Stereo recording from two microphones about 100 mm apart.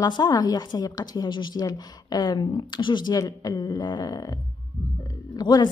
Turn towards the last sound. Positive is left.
turn(degrees=45)  # may be behind; listen again after turning